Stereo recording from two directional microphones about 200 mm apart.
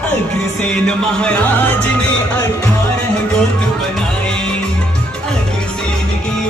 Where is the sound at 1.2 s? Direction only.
5° left (ahead or behind).